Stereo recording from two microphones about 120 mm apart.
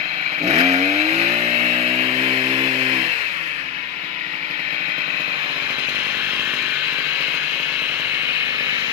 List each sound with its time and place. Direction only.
0.5 s vehicle: 60° right (ahead or behind); by 2.9 s 45° right (ahead or behind)